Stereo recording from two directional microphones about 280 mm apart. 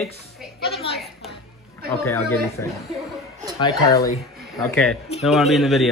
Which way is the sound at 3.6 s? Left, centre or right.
Centre.